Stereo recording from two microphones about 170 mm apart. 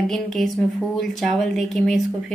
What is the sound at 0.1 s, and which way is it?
Speech, centre (ahead or behind).